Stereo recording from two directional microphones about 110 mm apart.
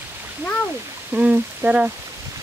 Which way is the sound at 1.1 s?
10° right (ahead or behind).